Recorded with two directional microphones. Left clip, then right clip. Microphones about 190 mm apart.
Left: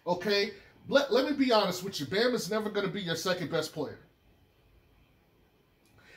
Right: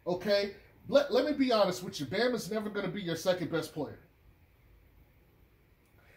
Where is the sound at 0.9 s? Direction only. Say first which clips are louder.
Left 1 dB; 15° left (ahead or behind).